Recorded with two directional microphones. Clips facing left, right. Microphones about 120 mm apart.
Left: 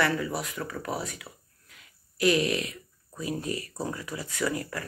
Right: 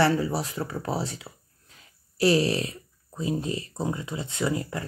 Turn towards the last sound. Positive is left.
turn(degrees=-25)  # may be behind; listen again after turning